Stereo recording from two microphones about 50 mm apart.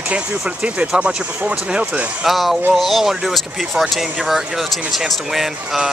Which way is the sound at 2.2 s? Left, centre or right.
Centre.